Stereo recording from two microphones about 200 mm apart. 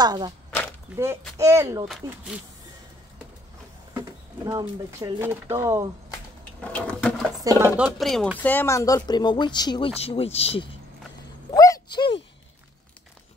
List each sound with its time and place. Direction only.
0.0 s speech: 20° right (ahead or behind)
0.9 s speech: 5° right (ahead or behind)
4.5 s speech: 20° right (ahead or behind)
6.6 s sewing machine: 5° left (ahead or behind)
7.4 s speech: 10° right (ahead or behind); by 10.7 s 30° left (ahead or behind)
11.5 s a sound: 20° left (ahead or behind)